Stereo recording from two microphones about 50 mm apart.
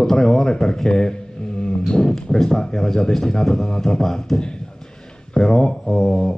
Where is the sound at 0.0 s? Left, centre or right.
Centre.